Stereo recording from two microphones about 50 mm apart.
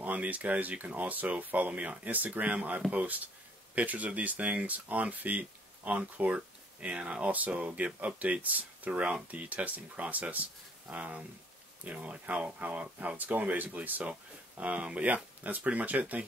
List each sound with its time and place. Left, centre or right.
0.0 s speech: right